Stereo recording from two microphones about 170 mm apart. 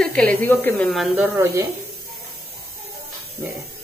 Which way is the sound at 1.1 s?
15° right (ahead or behind).